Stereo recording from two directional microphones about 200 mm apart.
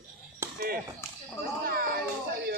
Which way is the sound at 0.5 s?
50° right (ahead or behind).